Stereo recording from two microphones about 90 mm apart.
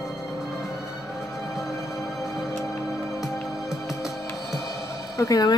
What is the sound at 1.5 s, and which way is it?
Music, centre (ahead or behind).